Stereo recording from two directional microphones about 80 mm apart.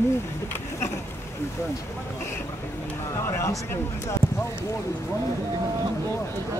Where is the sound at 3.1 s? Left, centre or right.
Left.